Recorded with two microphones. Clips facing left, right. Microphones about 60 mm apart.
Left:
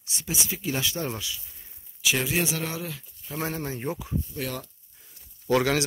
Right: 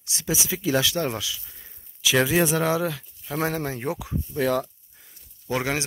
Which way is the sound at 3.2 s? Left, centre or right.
Right.